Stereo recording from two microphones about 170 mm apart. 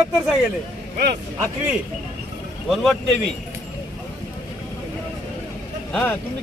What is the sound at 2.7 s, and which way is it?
Speech, centre (ahead or behind).